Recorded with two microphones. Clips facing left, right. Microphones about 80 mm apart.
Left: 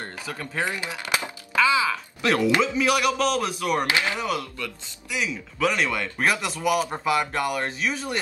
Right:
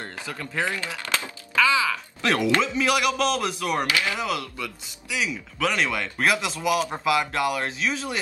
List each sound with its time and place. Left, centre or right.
0.0 s speech: centre
0.7 s a sound: centre
2.5 s speech: centre
3.8 s speech: left
4.2 s speech: centre